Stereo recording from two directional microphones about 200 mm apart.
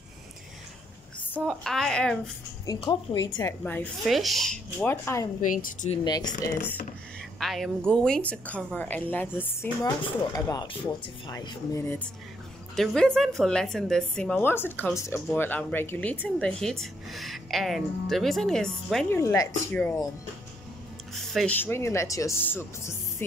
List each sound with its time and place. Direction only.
1.4 s a woman's voice: centre (ahead or behind)
2.6 s a woman's voice: 15° left (ahead or behind)
5.6 s speech: 40° left (ahead or behind)
6.0 s a woman's voice: 20° left (ahead or behind)
12.7 s a woman's voice: 5° left (ahead or behind)
19.0 s a woman's voice: 15° left (ahead or behind)
21.1 s a woman's voice: centre (ahead or behind)